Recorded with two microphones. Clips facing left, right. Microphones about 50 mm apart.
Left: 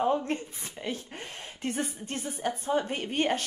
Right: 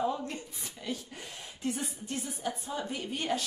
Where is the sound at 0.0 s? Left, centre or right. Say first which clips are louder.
Left 5 dB; left.